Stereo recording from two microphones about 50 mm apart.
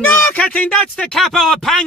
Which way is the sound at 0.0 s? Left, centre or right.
Left.